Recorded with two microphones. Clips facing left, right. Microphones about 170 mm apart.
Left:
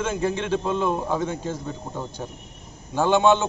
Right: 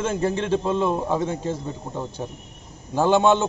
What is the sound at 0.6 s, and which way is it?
A man's voice, centre (ahead or behind).